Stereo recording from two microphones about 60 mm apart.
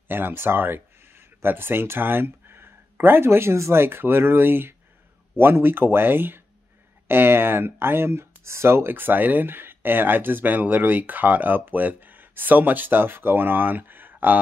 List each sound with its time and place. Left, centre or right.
0.1 s speech: right